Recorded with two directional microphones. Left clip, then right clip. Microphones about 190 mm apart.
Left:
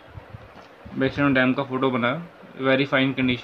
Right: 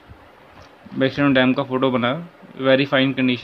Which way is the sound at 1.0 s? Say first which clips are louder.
Right 3 dB; 25° right (ahead or behind).